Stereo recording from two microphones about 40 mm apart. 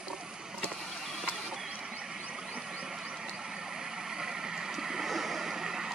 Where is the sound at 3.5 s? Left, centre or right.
Centre.